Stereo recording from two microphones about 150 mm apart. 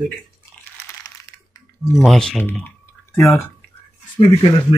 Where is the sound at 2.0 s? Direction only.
Centre (ahead or behind).